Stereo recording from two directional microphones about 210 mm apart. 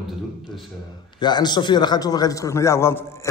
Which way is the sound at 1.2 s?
20° left (ahead or behind).